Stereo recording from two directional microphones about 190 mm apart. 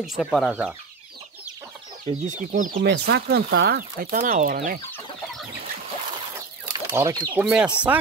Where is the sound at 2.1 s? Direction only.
40° right (ahead or behind).